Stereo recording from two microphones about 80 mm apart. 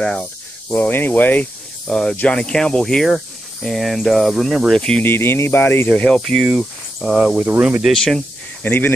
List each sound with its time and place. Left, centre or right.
0.0 s speech: centre
1.9 s speech: centre
5.0 s speech: left
5.9 s speech: centre
7.4 s speech: centre
7.8 s speech: centre
8.6 s speech: left